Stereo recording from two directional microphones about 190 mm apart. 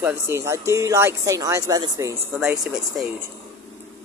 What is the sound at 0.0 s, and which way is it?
Speech, 15° right (ahead or behind).